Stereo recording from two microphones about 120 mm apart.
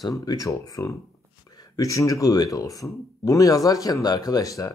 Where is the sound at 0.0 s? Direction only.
35° left (ahead or behind).